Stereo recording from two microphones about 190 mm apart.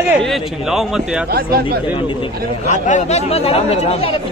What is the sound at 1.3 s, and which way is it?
Speech, 55° right (ahead or behind).